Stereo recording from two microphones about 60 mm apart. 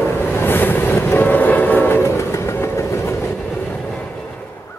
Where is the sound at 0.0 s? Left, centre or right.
Left.